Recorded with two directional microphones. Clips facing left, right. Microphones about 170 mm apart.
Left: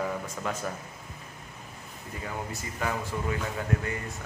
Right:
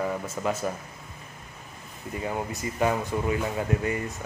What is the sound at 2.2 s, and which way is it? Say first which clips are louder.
Speech: right 6 dB; 20° right (ahead or behind).